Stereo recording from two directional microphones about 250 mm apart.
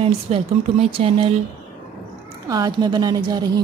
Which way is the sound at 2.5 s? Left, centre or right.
Centre.